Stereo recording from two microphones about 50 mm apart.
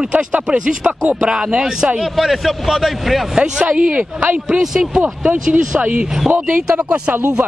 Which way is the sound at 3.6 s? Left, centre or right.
Right.